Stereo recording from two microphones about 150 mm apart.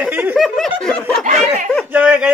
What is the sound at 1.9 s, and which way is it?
Speech, 10° right (ahead or behind).